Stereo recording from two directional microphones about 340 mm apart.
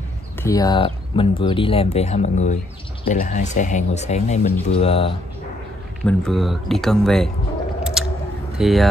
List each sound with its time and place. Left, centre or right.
0.4 s speech: centre
6.0 s speech: centre
7.8 s chewing: centre
8.5 s speech: centre